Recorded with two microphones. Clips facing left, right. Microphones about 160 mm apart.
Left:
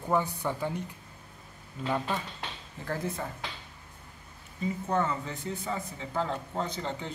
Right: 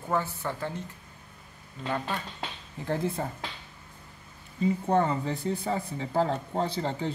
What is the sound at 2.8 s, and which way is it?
Speech, 25° right (ahead or behind).